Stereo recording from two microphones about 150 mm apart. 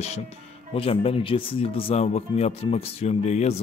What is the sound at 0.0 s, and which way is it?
A man's voice, 45° left (ahead or behind).